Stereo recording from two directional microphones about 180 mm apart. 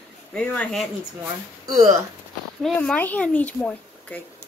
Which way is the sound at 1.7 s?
45° right (ahead or behind).